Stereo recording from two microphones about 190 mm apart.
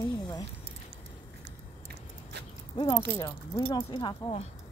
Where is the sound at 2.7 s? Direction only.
25° left (ahead or behind).